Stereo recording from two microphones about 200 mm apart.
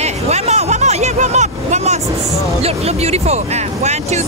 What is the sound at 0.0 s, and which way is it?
Hubbub, 35° right (ahead or behind).